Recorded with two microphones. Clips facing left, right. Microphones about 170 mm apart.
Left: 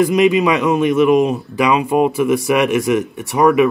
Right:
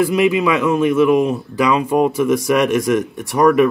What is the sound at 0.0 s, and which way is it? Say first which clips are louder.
A man's voice: left 2 dB; 20° left (ahead or behind).